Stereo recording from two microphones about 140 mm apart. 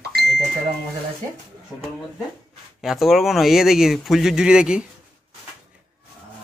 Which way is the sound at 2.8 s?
Centre (ahead or behind).